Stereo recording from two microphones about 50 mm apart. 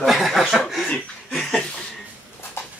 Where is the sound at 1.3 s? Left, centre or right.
Centre.